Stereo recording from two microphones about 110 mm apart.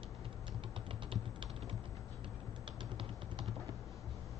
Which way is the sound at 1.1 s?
55° right (ahead or behind).